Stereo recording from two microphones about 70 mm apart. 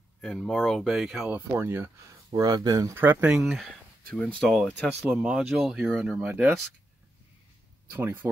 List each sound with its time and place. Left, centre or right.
0.2 s speech: centre
1.3 s speech: right
2.3 s speech: right
2.9 s speech: right
3.4 s speech: centre
4.1 s speech: centre
4.4 s speech: centre
7.9 s speech: right